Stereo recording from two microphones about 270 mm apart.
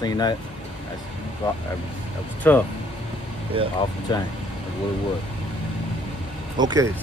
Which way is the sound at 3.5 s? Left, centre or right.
Centre.